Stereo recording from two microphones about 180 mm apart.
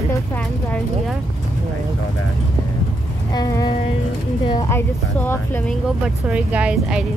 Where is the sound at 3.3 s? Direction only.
20° left (ahead or behind).